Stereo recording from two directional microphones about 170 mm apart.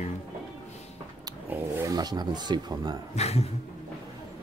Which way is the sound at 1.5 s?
15° right (ahead or behind).